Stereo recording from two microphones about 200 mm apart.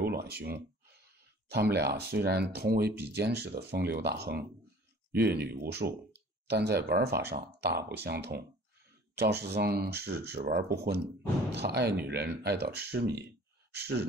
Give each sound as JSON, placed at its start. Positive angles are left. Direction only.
{"t": 0.0, "sound": "speech", "side_deg": -50}